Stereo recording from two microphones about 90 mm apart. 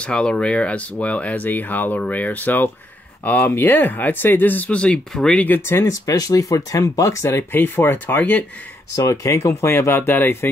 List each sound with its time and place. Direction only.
0.0 s speech: 10° left (ahead or behind)
5.7 s speech: 35° left (ahead or behind); by 8.5 s 20° left (ahead or behind)
8.9 s speech: 40° left (ahead or behind)